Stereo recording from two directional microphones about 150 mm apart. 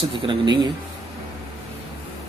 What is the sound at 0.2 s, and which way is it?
Speech, 30° right (ahead or behind).